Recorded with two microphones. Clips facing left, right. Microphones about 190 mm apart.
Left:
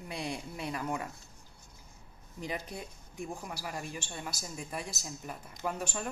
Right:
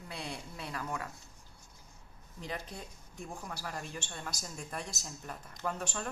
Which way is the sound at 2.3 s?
15° left (ahead or behind).